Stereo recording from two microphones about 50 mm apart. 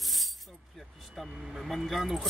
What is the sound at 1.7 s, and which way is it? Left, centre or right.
Speech, centre.